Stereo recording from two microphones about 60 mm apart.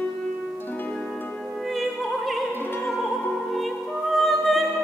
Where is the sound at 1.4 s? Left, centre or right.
Centre.